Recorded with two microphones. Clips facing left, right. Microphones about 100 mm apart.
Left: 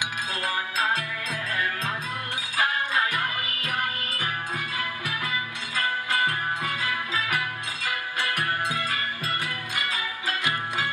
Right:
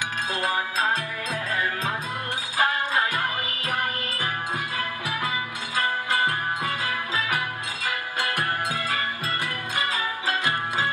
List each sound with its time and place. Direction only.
2.5 s music: 25° right (ahead or behind)
6.0 s music: 30° right (ahead or behind)